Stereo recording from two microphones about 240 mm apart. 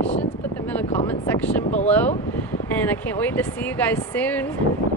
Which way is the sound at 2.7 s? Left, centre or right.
Centre.